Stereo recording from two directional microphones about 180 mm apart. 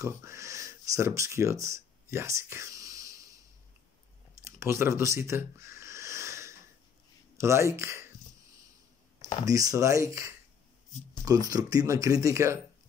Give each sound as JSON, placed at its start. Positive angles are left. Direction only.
{"t": 0.0, "sound": "speech", "side_deg": -15}
{"t": 4.4, "sound": "a sound", "side_deg": -15}
{"t": 7.3, "sound": "speech", "side_deg": -15}
{"t": 9.5, "sound": "speech", "side_deg": -20}